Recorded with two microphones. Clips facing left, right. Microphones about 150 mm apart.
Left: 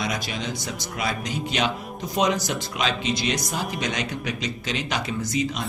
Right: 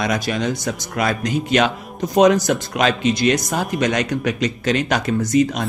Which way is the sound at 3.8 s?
50° right (ahead or behind).